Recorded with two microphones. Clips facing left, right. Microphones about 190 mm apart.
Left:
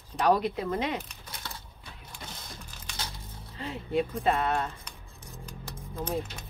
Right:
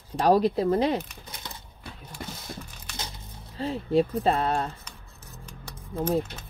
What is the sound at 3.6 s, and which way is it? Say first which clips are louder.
Speech: right 6 dB; 35° right (ahead or behind).